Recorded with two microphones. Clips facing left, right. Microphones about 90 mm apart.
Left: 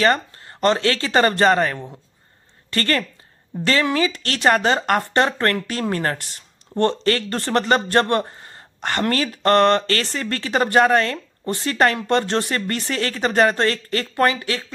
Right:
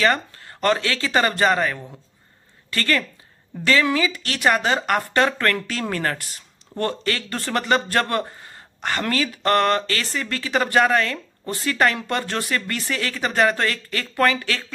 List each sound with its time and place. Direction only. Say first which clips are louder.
0.0 s speech: left 2 dB; 30° left (ahead or behind)
0.8 s speech: left 3 dB; 40° left (ahead or behind)
4.5 s speech: left 2 dB; 40° left (ahead or behind)
9.8 s speech: left 3 dB; 45° left (ahead or behind)